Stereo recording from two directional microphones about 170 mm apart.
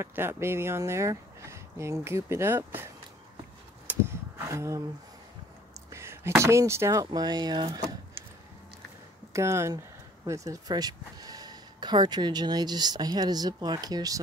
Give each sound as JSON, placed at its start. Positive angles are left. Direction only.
{"t": 0.0, "sound": "speech", "side_deg": -15}
{"t": 3.9, "sound": "a sound", "side_deg": -10}
{"t": 4.4, "sound": "speech", "side_deg": -15}
{"t": 5.9, "sound": "speech", "side_deg": -15}
{"t": 9.3, "sound": "speech", "side_deg": -15}